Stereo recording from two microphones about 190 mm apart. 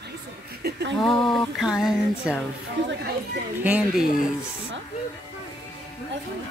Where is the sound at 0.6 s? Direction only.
60° right (ahead or behind).